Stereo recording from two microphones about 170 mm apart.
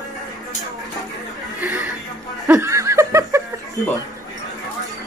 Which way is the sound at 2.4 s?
15° right (ahead or behind).